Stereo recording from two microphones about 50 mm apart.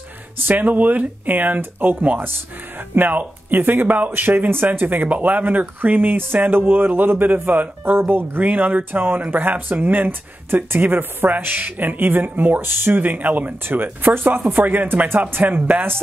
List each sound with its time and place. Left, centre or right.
0.5 s speech: right
3.0 s speech: right